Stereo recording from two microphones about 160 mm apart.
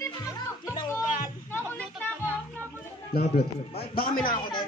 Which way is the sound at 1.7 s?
10° left (ahead or behind).